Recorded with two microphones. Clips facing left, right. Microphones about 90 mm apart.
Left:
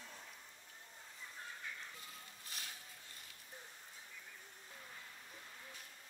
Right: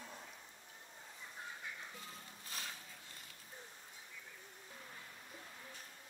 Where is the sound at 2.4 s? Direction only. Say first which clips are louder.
Right 4 dB; 35° right (ahead or behind).